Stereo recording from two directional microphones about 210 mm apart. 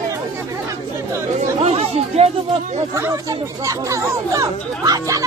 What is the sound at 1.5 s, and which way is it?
Chatter, 30° right (ahead or behind).